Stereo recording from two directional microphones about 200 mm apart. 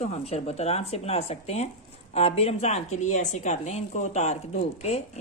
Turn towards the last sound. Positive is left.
turn(degrees=30)  # may be behind; listen again after turning